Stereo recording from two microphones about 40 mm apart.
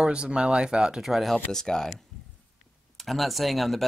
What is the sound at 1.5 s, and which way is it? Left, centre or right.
Speech, centre.